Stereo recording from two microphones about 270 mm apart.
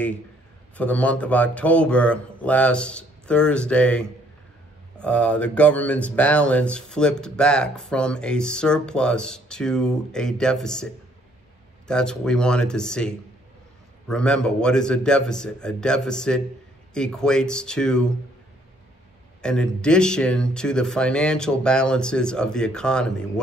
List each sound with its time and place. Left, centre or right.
0.7 s speech: centre
11.9 s speech: centre
19.4 s speech: centre